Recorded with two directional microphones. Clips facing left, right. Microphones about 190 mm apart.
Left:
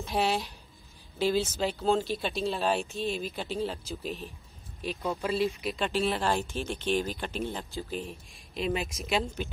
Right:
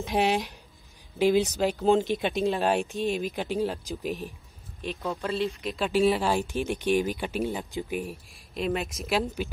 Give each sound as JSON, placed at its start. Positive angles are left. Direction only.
{"t": 0.0, "sound": "speech", "side_deg": -15}
{"t": 5.2, "sound": "speech", "side_deg": 5}
{"t": 8.5, "sound": "speech", "side_deg": 0}